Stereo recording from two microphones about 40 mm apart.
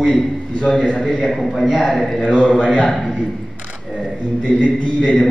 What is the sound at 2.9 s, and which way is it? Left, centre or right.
Speech, centre.